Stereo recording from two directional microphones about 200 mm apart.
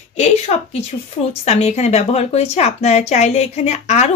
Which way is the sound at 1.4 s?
30° left (ahead or behind).